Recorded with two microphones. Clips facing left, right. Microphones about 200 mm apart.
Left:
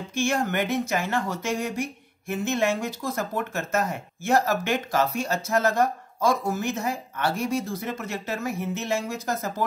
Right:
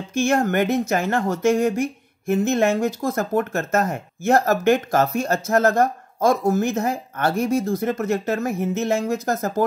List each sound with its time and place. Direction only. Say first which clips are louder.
0.1 s speech: right 6 dB; 45° right (ahead or behind)